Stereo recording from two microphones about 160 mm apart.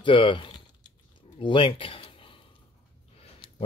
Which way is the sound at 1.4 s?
30° left (ahead or behind).